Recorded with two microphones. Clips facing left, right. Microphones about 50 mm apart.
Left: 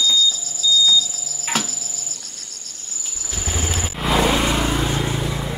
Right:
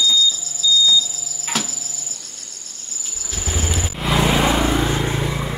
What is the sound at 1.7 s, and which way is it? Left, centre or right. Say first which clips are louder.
Cricket: even; right.